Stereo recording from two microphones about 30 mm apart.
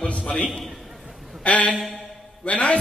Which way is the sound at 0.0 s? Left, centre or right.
Left.